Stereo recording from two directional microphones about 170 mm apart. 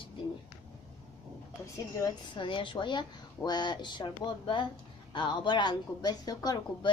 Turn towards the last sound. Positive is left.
turn(degrees=20)  # may be behind; listen again after turning